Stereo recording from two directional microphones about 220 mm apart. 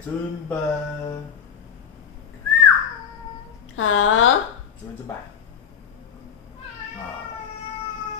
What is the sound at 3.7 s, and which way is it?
Speech, 65° left (ahead or behind).